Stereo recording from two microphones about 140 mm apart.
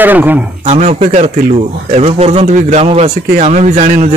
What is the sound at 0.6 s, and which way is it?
Speech, 50° right (ahead or behind).